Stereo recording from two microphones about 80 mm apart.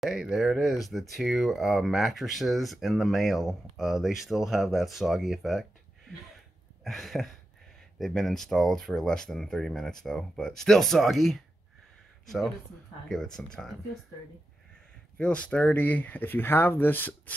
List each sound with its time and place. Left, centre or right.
0.0 s speech: centre
6.8 s a sound: centre
8.0 s speech: centre
13.1 s speech: centre
15.1 s speech: centre